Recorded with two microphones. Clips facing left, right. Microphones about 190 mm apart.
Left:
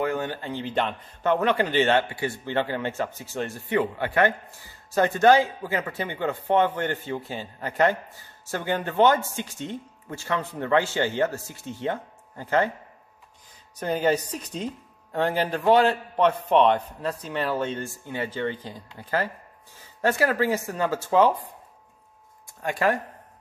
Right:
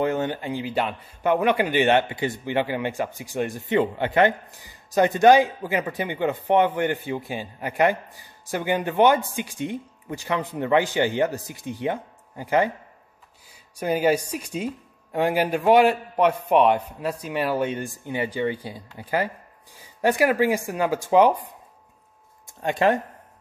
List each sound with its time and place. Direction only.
0.0 s speech: 20° right (ahead or behind)
13.7 s speech: 10° right (ahead or behind)
22.6 s speech: 25° right (ahead or behind)